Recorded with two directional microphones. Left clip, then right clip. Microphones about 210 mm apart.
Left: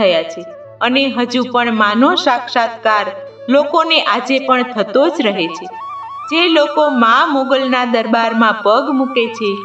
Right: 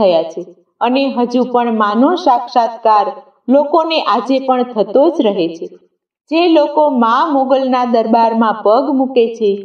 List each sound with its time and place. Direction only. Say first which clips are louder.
0.0 s a man's voice: right 1 dB; 15° left (ahead or behind)